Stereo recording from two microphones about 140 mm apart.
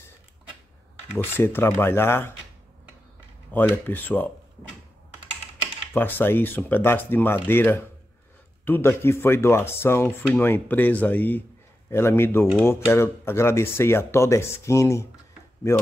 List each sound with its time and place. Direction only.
1.1 s speech: 15° left (ahead or behind)
3.5 s speech: 15° left (ahead or behind)
5.9 s speech: 15° left (ahead or behind)